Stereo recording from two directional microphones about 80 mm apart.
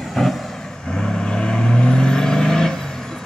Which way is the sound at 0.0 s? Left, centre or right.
Centre.